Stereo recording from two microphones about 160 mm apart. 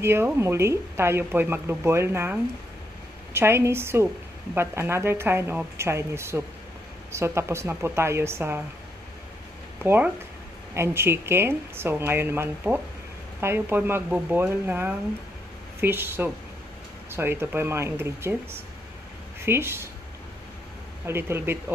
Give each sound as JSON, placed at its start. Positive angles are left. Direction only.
{"t": 0.0, "sound": "speech", "side_deg": -15}
{"t": 9.8, "sound": "speech", "side_deg": -10}
{"t": 21.1, "sound": "speech", "side_deg": -15}